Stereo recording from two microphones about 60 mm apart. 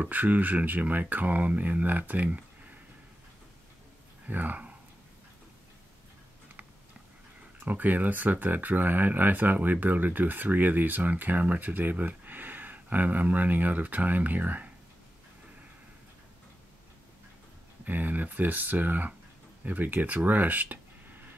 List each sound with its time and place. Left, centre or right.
0.0 s speech: right
4.3 s speech: right
7.6 s speech: right
17.8 s speech: right